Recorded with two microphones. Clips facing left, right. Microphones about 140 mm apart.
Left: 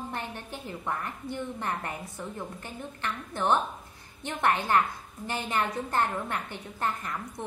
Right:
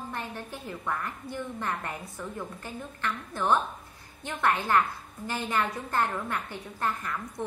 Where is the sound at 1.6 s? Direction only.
20° left (ahead or behind).